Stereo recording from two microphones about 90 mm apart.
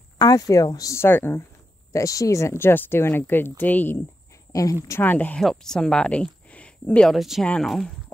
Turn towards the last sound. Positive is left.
turn(degrees=5)  # may be behind; listen again after turning